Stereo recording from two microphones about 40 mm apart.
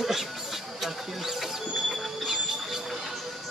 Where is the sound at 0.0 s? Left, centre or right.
Centre.